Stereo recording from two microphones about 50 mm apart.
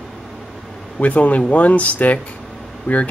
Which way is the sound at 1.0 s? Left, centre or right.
Left.